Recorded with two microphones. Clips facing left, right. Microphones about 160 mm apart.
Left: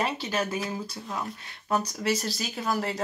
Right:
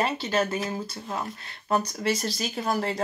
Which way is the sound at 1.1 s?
25° right (ahead or behind).